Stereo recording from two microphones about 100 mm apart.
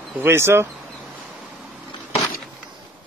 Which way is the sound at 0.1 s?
25° right (ahead or behind).